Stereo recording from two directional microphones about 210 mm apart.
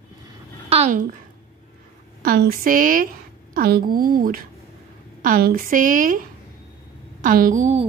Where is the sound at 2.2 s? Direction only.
45° right (ahead or behind).